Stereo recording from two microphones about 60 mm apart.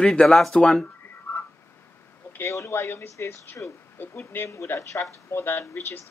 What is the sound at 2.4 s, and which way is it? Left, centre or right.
Speech, left.